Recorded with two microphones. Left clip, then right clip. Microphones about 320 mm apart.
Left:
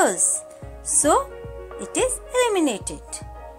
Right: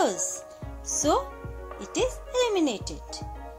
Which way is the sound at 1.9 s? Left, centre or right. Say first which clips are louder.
Left 5 dB; centre.